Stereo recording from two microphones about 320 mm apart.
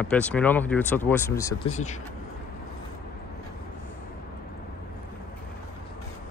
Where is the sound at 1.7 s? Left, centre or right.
Left.